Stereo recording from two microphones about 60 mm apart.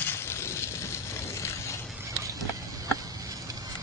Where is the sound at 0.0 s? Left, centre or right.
Left.